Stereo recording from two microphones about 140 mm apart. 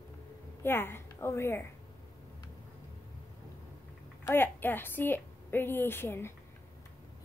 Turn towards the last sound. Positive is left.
turn(degrees=15)  # may be behind; listen again after turning